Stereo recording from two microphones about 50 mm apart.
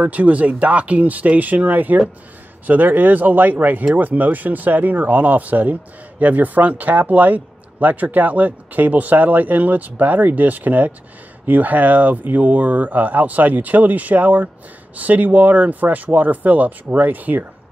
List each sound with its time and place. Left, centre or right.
0.0 s speech: right